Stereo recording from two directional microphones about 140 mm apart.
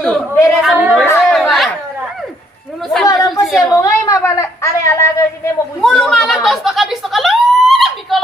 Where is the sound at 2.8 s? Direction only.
Centre (ahead or behind).